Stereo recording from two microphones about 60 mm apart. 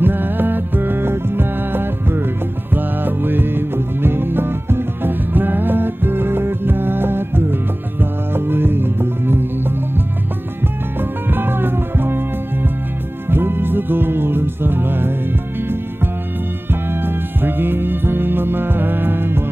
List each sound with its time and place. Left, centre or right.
0.0 s music: right
13.3 s music: right
16.9 s music: right